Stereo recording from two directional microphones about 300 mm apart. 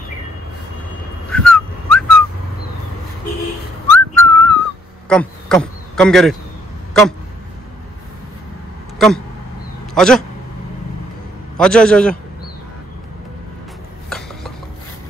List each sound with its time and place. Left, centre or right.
1.3 s whistling: centre
3.9 s whistling: centre
5.1 s a man's voice: centre
6.9 s a sound: centre
8.9 s a sound: centre
9.9 s a man's voice: centre
11.5 s a man's voice: centre
14.0 s ratchet: centre